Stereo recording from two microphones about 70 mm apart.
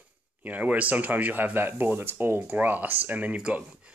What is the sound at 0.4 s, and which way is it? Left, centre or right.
Speech, right.